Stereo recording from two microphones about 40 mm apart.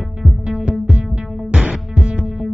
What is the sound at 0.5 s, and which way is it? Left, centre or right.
Music, right.